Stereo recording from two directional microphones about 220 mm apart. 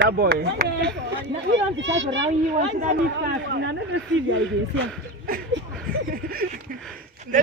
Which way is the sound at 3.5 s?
55° right (ahead or behind).